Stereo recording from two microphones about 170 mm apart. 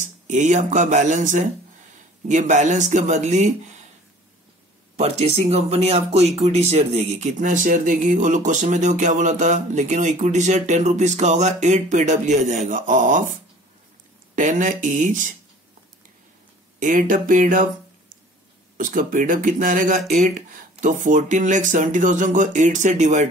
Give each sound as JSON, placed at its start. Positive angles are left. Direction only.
{"t": 0.0, "sound": "speech", "side_deg": -45}
{"t": 4.9, "sound": "speech", "side_deg": -40}
{"t": 14.3, "sound": "speech", "side_deg": -50}
{"t": 16.8, "sound": "speech", "side_deg": -50}
{"t": 18.8, "sound": "speech", "side_deg": -50}